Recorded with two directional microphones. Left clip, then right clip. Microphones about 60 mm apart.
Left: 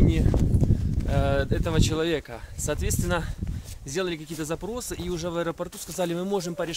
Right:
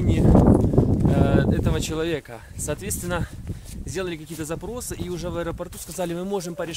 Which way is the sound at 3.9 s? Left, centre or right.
Left.